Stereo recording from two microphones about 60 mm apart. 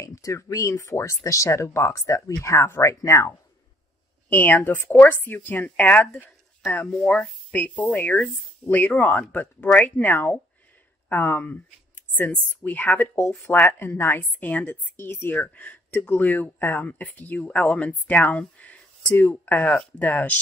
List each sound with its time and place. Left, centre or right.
0.0 s speech: left
4.3 s speech: left
7.0 s speech: centre
7.5 s speech: left
13.5 s speech: left
15.0 s speech: left
15.2 s speech: left
16.0 s speech: left